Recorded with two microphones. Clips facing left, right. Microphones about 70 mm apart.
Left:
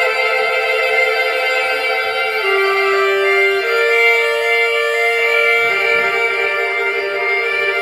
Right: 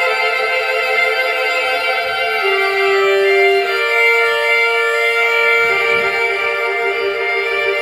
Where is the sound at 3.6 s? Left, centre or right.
Centre.